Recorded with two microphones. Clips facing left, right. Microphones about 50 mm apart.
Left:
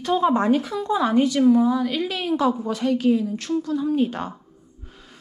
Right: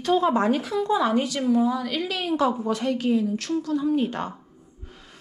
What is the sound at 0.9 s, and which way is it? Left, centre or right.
Speech, left.